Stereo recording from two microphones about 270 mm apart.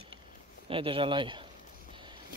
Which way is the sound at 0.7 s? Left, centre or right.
Centre.